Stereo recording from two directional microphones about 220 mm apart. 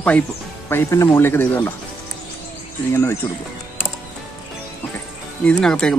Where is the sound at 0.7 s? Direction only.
10° left (ahead or behind).